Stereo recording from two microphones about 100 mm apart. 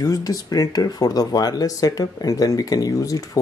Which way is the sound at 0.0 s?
35° left (ahead or behind).